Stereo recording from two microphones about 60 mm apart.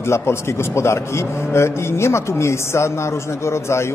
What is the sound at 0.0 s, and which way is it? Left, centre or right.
A man's voice, left.